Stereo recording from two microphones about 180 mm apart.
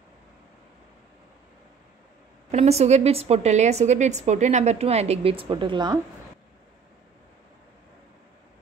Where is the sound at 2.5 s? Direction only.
35° right (ahead or behind).